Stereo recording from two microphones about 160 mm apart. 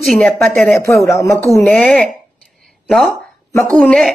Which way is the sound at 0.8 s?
20° left (ahead or behind).